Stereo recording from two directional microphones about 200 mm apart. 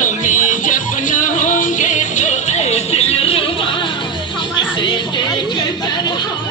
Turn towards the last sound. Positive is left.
turn(degrees=20)  # may be behind; listen again after turning